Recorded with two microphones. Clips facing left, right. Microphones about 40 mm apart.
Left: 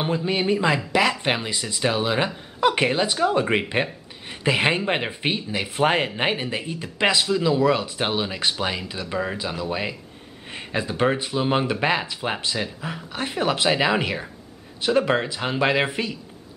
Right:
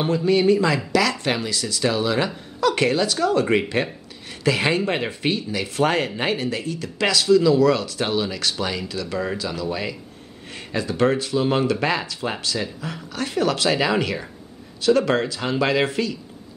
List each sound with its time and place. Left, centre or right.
0.0 s speech: centre